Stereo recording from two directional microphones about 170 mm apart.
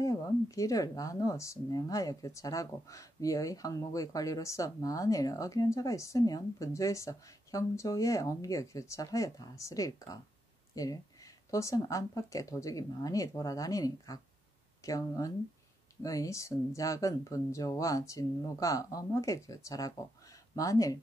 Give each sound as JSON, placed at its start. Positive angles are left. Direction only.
{"t": 0.0, "sound": "speech", "side_deg": 20}